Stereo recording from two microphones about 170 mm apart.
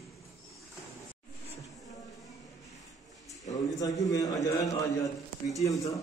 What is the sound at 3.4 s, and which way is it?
A man's voice, 20° left (ahead or behind).